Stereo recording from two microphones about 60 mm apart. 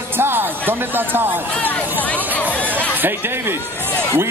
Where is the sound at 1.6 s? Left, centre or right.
Left.